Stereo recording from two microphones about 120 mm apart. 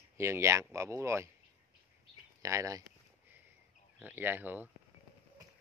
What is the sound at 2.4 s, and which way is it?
Speech, 25° right (ahead or behind).